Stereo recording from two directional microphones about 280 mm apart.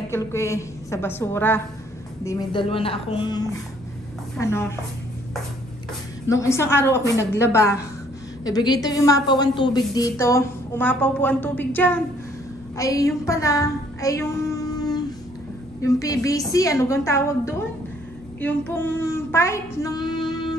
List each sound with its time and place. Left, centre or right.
0.1 s a woman's voice: centre
6.2 s a woman's voice: centre